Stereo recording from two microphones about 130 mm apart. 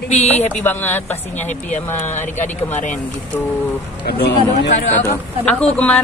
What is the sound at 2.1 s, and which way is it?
Speech, 65° left (ahead or behind).